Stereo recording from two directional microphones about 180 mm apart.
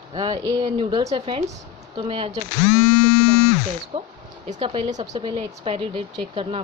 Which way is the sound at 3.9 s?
30° right (ahead or behind).